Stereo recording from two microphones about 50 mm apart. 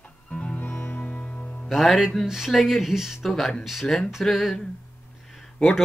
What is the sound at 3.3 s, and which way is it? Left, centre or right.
Speech, centre.